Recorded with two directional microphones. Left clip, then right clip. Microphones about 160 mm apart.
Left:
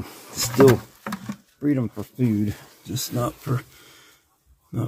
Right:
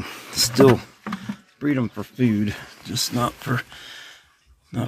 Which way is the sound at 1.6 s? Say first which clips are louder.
Even; 5° right (ahead or behind).